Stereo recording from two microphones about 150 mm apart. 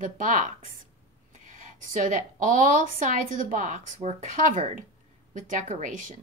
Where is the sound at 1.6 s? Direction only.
55° right (ahead or behind).